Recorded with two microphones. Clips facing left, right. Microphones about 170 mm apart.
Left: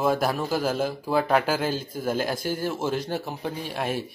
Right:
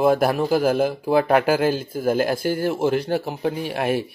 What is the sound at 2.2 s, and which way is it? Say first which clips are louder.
Speech: right 6 dB; 55° right (ahead or behind).